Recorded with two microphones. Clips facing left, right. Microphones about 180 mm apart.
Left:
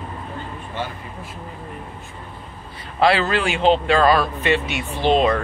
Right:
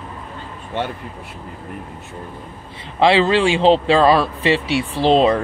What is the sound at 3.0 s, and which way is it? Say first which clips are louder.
A man's voice: right 4 dB; 25° right (ahead or behind).